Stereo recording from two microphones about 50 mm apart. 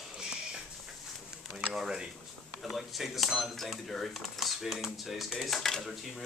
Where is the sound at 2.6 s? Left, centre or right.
Centre.